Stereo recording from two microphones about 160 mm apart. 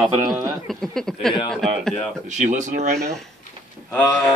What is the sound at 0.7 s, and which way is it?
A man's voice, 5° left (ahead or behind).